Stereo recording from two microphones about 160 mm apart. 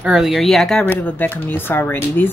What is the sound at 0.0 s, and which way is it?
Speech, 5° right (ahead or behind).